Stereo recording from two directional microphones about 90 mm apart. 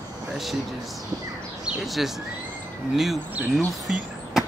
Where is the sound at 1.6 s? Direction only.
Centre (ahead or behind).